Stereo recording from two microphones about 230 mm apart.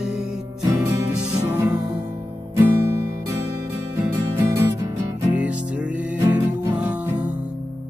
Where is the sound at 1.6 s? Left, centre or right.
Centre.